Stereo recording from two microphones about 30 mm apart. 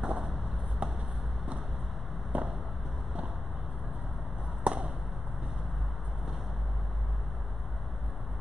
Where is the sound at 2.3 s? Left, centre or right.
Right.